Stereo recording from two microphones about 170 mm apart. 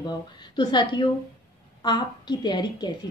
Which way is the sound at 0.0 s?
25° left (ahead or behind).